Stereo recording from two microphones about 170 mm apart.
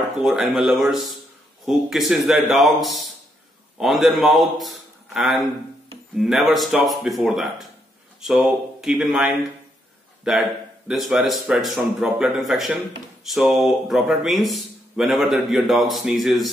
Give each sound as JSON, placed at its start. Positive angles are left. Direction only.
{"t": 0.2, "sound": "a man's voice", "side_deg": 0}
{"t": 10.9, "sound": "speech", "side_deg": 0}